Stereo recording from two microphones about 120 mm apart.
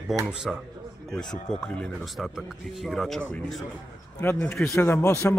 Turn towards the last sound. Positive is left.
turn(degrees=20)  # may be behind; listen again after turning